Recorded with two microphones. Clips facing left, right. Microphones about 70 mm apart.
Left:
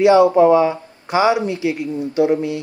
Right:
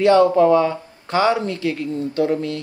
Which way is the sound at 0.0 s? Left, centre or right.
Centre.